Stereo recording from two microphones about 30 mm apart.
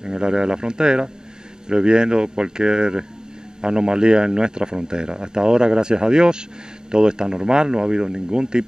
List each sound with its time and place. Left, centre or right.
0.0 s speech: right